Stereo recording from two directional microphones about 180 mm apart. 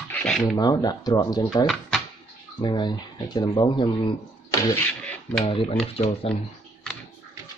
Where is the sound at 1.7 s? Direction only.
Centre (ahead or behind).